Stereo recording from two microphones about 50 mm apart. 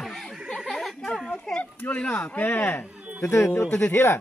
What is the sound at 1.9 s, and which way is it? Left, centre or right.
Speech, left.